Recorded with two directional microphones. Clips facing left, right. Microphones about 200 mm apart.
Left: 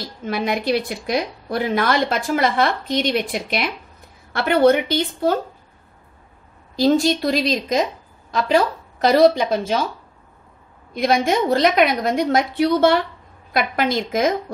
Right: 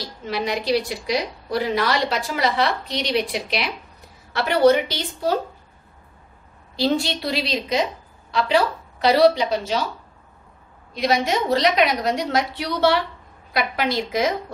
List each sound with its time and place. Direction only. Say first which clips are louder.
0.2 s a woman's voice: left 3 dB; 50° left (ahead or behind)
6.8 s a woman's voice: left 5 dB; 45° left (ahead or behind)
10.9 s a woman's voice: left 3 dB; 50° left (ahead or behind)